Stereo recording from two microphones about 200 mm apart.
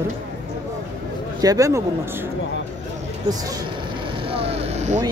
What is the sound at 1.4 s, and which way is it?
Speech, 15° right (ahead or behind).